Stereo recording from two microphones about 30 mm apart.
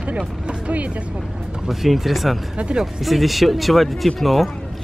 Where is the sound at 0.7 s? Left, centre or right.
Right.